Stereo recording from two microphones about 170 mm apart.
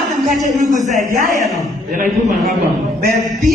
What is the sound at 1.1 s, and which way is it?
Music, 55° right (ahead or behind).